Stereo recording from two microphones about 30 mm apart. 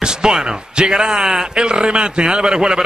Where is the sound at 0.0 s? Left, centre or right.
Right.